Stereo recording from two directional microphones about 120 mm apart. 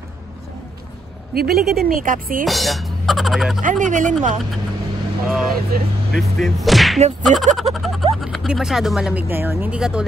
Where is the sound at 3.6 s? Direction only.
90° right.